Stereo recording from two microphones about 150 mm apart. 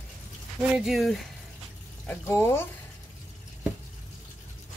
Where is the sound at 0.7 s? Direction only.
Centre (ahead or behind).